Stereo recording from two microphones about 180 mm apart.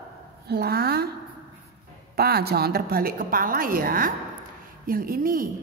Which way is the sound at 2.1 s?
60° right (ahead or behind).